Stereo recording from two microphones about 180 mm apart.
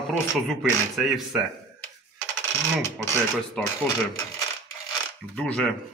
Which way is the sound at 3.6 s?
5° left (ahead or behind).